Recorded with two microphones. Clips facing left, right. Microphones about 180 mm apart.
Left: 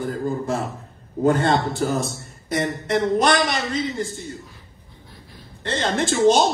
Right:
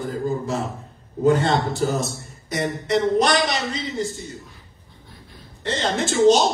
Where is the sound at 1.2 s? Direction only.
55° left (ahead or behind).